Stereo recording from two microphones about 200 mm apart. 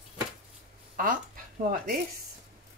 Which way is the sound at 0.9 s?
45° right (ahead or behind).